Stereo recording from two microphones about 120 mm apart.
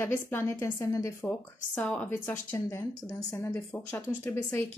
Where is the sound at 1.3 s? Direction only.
10° left (ahead or behind); by 3.5 s 30° left (ahead or behind).